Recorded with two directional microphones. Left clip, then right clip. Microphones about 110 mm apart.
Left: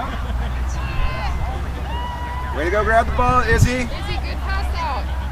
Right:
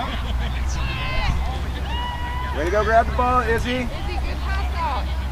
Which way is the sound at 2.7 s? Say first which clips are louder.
Left 1 dB; 50° left (ahead or behind).